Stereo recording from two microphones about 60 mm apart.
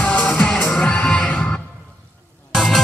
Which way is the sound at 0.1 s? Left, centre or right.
Left.